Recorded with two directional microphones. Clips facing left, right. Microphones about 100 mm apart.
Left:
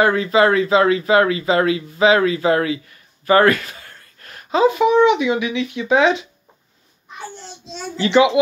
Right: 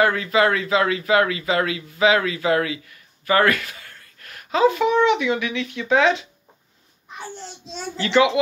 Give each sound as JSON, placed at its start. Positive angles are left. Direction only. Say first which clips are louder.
{"t": 0.0, "sound": "speech", "louder": "left 3 dB", "side_deg": 25}
{"t": 8.0, "sound": "a child's voice", "louder": "left 3 dB", "side_deg": 20}